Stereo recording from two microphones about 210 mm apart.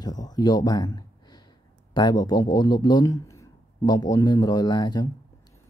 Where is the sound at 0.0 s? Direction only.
20° left (ahead or behind).